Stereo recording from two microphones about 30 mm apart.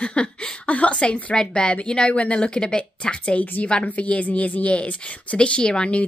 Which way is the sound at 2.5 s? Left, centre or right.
Left.